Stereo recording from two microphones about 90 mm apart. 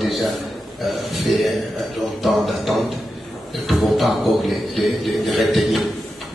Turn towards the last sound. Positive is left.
turn(degrees=0)  # may be behind; listen again after turning